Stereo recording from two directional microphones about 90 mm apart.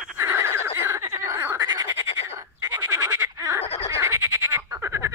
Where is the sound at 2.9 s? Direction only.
35° right (ahead or behind).